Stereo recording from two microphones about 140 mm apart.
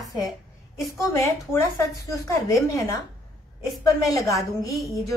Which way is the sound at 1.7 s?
25° left (ahead or behind).